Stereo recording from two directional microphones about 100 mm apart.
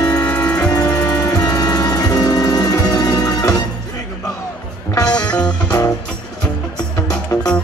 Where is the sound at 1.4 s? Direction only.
40° left (ahead or behind).